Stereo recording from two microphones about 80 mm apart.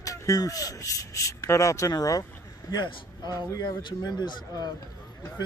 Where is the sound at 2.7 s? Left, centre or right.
Left.